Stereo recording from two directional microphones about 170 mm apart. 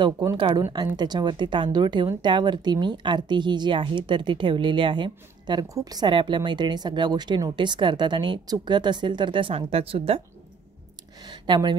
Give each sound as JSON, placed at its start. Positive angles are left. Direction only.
{"t": 0.0, "sound": "speech", "side_deg": -20}
{"t": 0.4, "sound": "speech", "side_deg": -30}
{"t": 11.2, "sound": "speech", "side_deg": -25}